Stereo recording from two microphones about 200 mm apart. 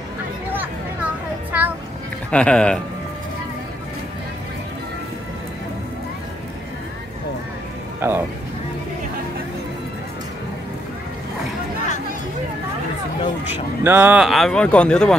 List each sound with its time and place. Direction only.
0.5 s a sound: 10° right (ahead or behind)
2.3 s speech: 5° left (ahead or behind)
8.0 s music: 10° right (ahead or behind)
13.5 s speech: 10° right (ahead or behind)